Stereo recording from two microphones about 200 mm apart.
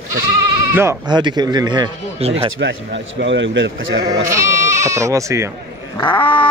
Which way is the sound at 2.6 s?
60° right (ahead or behind).